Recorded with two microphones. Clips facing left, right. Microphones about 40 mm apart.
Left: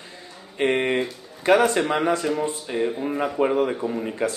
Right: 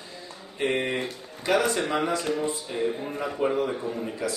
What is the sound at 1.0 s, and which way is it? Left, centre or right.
A man's voice, left.